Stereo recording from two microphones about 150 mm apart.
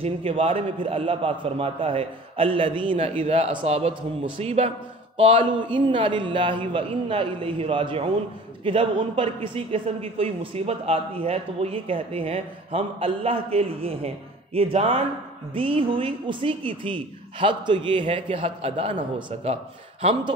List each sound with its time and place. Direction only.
0.0 s a man's voice: 40° right (ahead or behind)